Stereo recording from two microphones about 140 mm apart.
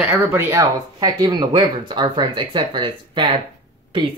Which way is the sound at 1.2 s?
35° right (ahead or behind).